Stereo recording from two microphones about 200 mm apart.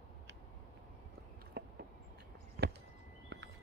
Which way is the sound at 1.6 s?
50° right (ahead or behind).